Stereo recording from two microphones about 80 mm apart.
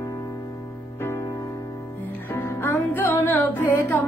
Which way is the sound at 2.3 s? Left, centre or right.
Left.